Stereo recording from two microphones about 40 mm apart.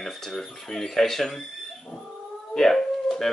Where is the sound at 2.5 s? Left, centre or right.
Centre.